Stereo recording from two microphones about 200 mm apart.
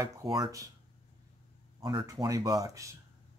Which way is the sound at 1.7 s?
20° right (ahead or behind).